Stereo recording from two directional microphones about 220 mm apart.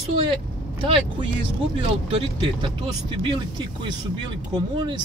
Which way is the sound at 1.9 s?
25° right (ahead or behind).